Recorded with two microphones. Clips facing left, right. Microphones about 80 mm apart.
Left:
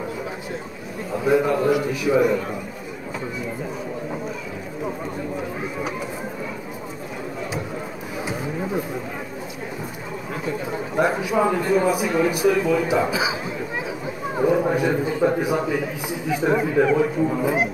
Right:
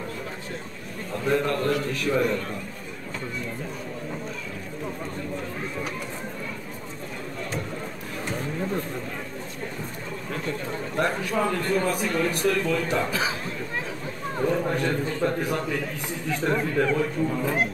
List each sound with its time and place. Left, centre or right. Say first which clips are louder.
1.1 s a man's voice: left 5 dB; centre
4.8 s chatter: left 5 dB; centre
8.3 s a sound: left 2 dB; centre
10.3 s a man's voice: left 4 dB; centre